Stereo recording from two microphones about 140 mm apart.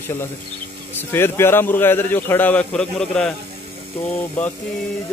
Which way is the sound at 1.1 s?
15° left (ahead or behind).